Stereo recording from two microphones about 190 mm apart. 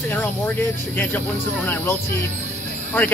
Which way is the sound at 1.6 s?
10° left (ahead or behind).